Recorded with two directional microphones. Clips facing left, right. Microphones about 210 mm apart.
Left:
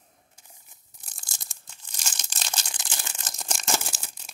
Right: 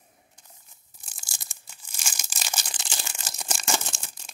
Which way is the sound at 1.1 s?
5° right (ahead or behind).